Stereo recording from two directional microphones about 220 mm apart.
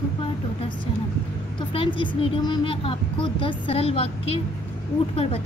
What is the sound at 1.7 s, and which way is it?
A woman's voice, 25° left (ahead or behind).